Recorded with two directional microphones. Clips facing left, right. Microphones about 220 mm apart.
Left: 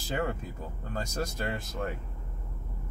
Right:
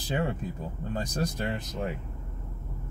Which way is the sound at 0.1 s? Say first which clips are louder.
Right 2 dB; 20° right (ahead or behind).